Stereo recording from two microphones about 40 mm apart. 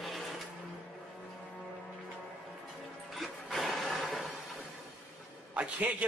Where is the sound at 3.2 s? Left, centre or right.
Centre.